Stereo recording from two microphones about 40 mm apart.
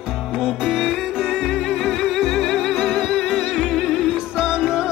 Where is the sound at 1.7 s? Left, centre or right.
Centre.